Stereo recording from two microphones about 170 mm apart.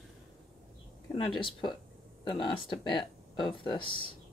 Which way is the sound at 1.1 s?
30° left (ahead or behind).